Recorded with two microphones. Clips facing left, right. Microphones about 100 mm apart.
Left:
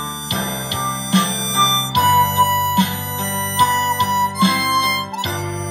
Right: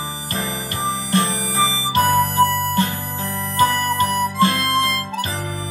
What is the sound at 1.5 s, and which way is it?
Music, 20° left (ahead or behind).